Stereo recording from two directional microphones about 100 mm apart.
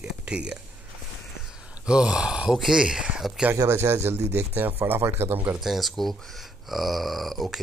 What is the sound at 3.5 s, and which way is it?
Speech, 30° right (ahead or behind).